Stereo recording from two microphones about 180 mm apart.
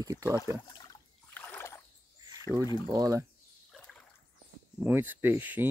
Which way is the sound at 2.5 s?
15° left (ahead or behind).